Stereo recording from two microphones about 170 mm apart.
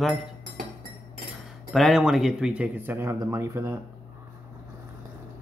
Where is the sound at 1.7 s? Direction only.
Centre (ahead or behind); by 3.7 s 15° right (ahead or behind).